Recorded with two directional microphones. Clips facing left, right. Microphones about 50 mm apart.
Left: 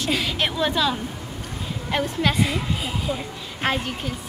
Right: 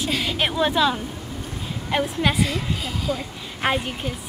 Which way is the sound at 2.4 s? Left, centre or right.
Centre.